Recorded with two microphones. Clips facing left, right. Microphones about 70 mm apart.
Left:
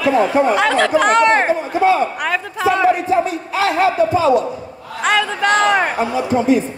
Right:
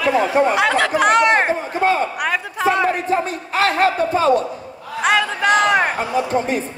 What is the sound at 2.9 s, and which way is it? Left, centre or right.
Speech, right.